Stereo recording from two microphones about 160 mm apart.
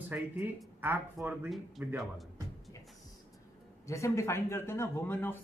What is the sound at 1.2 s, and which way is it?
Speech, centre (ahead or behind).